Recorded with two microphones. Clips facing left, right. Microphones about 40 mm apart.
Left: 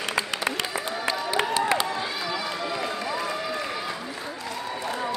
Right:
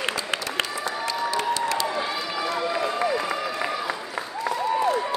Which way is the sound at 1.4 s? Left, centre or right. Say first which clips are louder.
Left 4 dB; left.